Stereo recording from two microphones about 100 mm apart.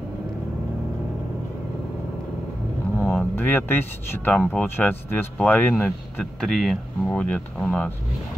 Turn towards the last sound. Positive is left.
turn(degrees=15)  # may be behind; listen again after turning